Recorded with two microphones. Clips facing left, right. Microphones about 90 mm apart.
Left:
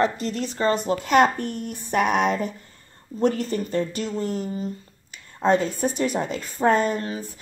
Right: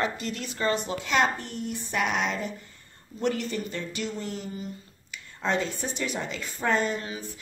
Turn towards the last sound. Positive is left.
turn(degrees=40)  # may be behind; listen again after turning